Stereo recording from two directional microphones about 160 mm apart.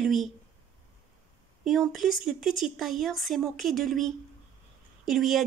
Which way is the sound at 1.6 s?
Centre (ahead or behind).